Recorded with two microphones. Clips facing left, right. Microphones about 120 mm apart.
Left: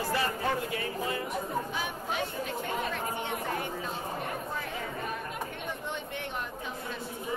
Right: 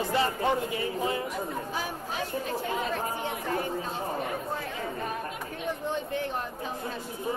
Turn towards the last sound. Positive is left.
turn(degrees=-35)  # may be behind; listen again after turning